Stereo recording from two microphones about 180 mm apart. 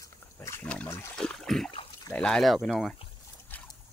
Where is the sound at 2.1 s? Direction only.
5° left (ahead or behind).